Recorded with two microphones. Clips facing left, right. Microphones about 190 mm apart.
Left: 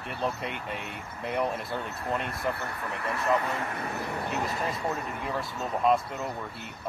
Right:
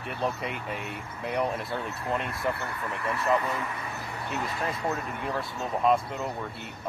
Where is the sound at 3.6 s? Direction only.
60° left (ahead or behind).